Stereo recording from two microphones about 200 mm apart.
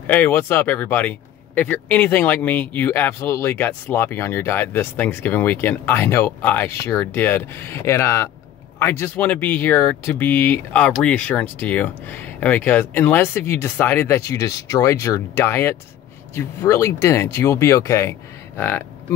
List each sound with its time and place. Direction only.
0.0 s speech: 10° left (ahead or behind)